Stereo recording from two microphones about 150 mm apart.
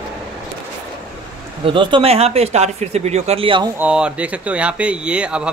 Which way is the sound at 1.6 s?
35° right (ahead or behind).